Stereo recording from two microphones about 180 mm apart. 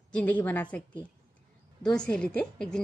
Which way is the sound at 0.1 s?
10° left (ahead or behind).